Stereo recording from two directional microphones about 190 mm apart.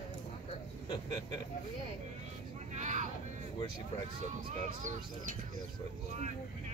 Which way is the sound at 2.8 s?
40° right (ahead or behind).